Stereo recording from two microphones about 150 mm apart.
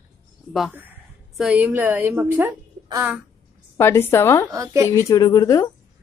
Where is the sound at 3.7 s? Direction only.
15° left (ahead or behind).